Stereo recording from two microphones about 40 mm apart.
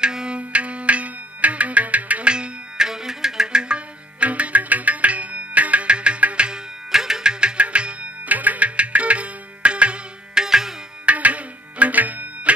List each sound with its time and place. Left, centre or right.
0.0 s music: right
0.4 s music: right
2.2 s tabla: right
2.9 s music: centre
6.9 s music: centre; by 8.1 s right
8.3 s tabla: right
10.3 s tabla: centre
11.1 s tabla: right